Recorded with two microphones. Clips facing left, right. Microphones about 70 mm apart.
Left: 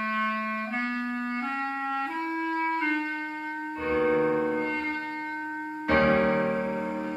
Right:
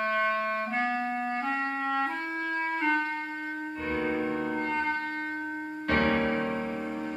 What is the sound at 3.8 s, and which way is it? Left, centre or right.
Music, left.